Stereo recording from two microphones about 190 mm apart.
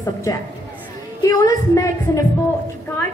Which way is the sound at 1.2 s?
15° left (ahead or behind).